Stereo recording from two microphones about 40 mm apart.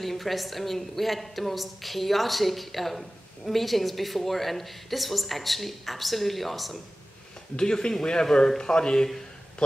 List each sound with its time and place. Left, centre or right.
0.0 s a woman's voice: centre
7.5 s speech: left